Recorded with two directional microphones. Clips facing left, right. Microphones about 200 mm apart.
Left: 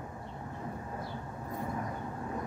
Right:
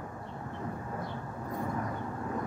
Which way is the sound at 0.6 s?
25° left (ahead or behind).